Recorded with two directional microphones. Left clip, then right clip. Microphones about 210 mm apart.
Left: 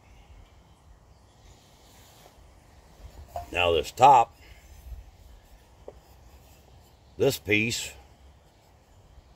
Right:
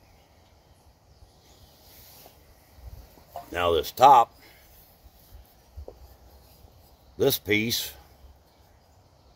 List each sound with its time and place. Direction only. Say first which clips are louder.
3.5 s speech: even; 20° right (ahead or behind)
7.2 s speech: even; 20° right (ahead or behind)